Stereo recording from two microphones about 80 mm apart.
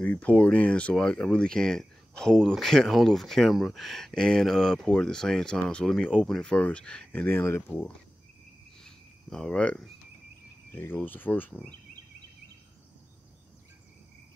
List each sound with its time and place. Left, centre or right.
0.0 s speech: centre
8.8 s cricket: centre
10.7 s speech: left